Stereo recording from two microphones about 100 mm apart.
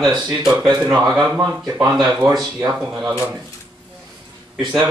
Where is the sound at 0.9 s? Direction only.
Centre (ahead or behind).